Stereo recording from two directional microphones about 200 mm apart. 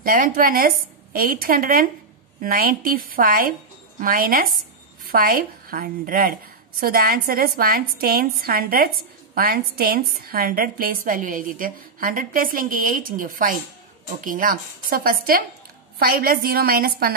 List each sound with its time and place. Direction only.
0.0 s a woman's voice: 45° right (ahead or behind)